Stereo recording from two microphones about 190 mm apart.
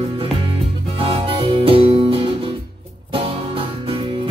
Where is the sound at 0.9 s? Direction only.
30° right (ahead or behind).